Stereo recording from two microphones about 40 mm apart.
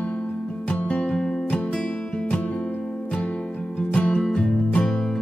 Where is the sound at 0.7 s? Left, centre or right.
Left.